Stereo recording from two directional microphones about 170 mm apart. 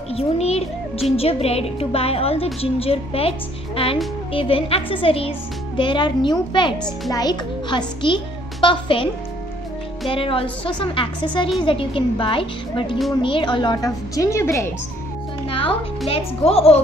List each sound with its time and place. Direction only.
0.1 s a woman's voice: 35° left (ahead or behind); by 14.7 s 15° left (ahead or behind)
16.1 s a woman's voice: 35° left (ahead or behind)